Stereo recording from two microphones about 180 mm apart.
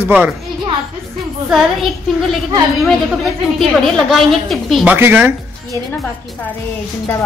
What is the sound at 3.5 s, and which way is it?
A woman's voice, centre (ahead or behind).